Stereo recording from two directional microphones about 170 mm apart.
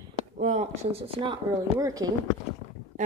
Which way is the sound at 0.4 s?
45° right (ahead or behind).